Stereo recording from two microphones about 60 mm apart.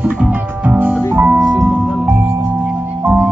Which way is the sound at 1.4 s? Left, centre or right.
Centre.